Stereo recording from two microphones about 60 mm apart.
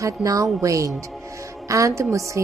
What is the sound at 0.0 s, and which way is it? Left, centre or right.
A woman's voice, right.